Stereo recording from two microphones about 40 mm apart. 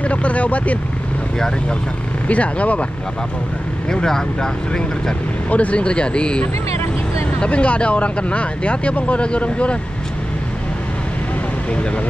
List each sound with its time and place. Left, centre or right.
0.0 s speech: left
2.2 s speech: left
3.9 s speech: centre
5.5 s speech: left